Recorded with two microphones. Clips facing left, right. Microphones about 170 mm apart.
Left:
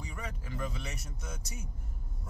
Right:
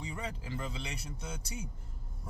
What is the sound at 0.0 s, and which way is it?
A man's voice, 30° right (ahead or behind).